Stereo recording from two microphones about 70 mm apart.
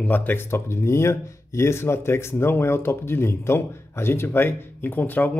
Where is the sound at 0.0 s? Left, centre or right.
Left.